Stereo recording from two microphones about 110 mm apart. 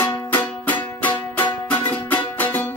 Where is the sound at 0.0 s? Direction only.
15° left (ahead or behind).